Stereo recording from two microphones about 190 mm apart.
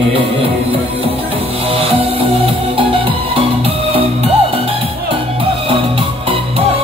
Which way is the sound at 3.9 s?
30° right (ahead or behind).